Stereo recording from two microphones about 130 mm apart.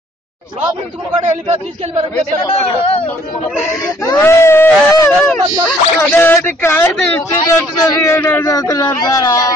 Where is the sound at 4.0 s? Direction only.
20° left (ahead or behind).